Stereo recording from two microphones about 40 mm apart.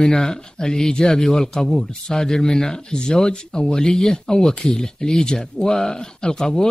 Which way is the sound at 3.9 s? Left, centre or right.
Centre.